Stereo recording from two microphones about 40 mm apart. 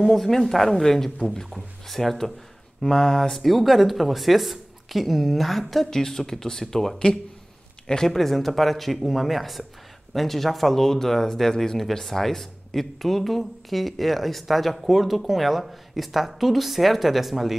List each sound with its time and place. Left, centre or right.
0.0 s speech: centre
3.4 s speech: centre
8.1 s speech: centre